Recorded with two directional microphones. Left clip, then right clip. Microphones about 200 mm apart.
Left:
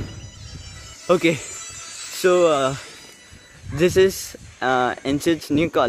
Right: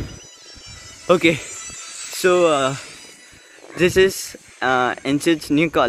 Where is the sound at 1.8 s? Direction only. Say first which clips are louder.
Right 1 dB; 50° left (ahead or behind).